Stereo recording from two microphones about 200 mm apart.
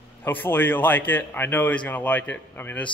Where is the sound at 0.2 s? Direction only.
10° left (ahead or behind).